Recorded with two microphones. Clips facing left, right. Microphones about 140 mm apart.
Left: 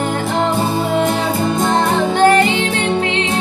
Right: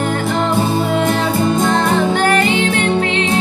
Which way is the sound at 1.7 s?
20° left (ahead or behind).